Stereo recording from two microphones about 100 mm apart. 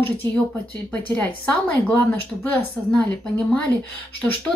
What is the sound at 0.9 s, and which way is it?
Speech, 15° left (ahead or behind).